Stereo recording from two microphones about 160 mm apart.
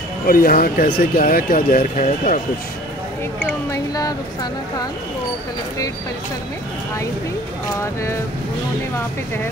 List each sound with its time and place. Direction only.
0.3 s speech: 65° left (ahead or behind)
3.7 s speech: 25° left (ahead or behind)
7.8 s speech: 15° left (ahead or behind)